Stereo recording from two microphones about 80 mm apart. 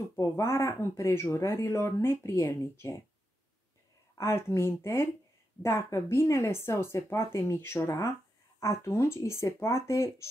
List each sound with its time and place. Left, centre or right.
0.2 s speech: left
4.1 s speech: left